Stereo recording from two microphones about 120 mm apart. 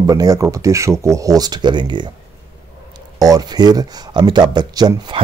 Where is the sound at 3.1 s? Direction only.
30° right (ahead or behind).